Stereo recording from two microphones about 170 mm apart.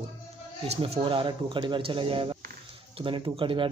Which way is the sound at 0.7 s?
35° right (ahead or behind).